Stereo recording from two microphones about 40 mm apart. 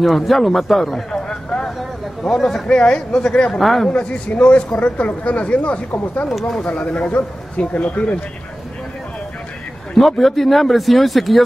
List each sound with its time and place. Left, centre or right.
0.0 s speech: centre
1.1 s a sound: left
1.8 s a sound: centre
2.6 s speech: left
3.5 s speech: centre
4.4 s speech: left
9.9 s speech: centre